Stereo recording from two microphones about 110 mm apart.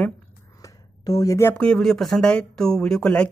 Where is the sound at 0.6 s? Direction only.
30° left (ahead or behind).